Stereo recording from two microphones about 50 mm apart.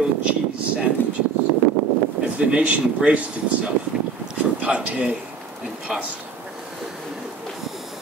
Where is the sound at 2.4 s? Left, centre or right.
Right.